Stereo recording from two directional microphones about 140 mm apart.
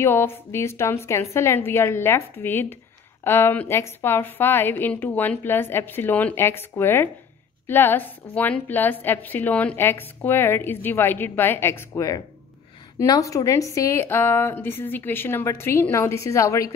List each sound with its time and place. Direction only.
0.0 s a woman's voice: 15° left (ahead or behind)